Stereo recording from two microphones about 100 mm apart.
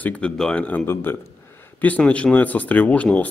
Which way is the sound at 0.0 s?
10° left (ahead or behind).